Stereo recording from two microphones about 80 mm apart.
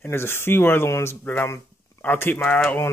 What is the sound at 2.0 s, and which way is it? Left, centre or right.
Speech, left.